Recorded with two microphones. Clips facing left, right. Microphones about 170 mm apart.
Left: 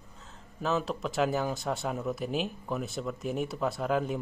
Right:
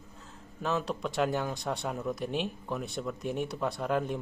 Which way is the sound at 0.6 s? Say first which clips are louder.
Left 1 dB; centre (ahead or behind).